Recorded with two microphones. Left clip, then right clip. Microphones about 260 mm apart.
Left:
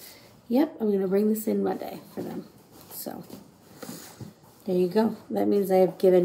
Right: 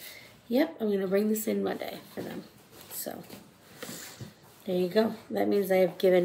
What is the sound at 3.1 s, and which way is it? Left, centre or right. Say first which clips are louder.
Speech: left 2 dB; centre.